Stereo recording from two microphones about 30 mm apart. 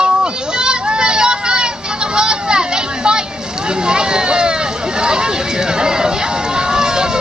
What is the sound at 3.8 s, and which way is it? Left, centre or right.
Vehicle, right.